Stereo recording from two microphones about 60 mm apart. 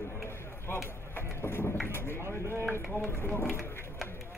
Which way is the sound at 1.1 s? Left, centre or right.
Left.